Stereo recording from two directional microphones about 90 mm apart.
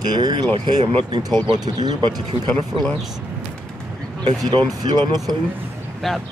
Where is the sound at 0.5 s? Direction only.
70° right (ahead or behind).